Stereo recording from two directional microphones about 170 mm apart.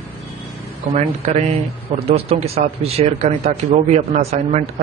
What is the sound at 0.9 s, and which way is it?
Speech, 40° right (ahead or behind).